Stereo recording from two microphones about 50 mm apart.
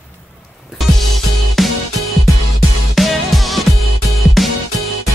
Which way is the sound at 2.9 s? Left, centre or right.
Centre.